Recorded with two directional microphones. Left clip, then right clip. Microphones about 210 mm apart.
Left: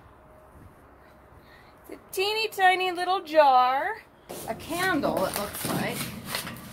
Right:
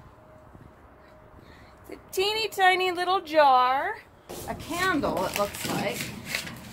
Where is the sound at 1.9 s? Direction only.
30° right (ahead or behind).